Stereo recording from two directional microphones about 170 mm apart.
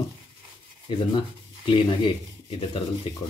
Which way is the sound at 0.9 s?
30° left (ahead or behind).